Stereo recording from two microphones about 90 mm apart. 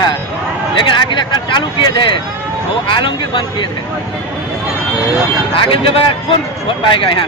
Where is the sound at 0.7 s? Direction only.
60° left (ahead or behind).